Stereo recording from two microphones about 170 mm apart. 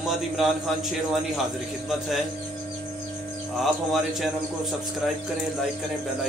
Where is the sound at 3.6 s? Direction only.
Centre (ahead or behind).